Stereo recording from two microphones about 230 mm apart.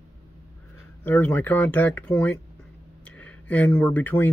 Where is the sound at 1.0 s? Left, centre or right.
Centre.